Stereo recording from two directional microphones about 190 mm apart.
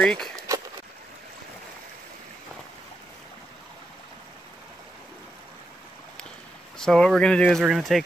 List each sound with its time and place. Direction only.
0.0 s speech: 5° left (ahead or behind)
6.8 s speech: centre (ahead or behind)